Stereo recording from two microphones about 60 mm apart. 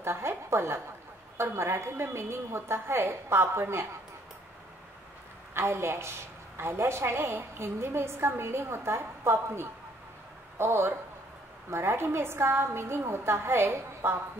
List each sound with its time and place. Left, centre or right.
0.0 s a woman's voice: right
5.5 s a woman's voice: right